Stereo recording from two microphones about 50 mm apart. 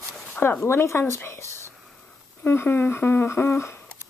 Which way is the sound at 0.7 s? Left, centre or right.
Left.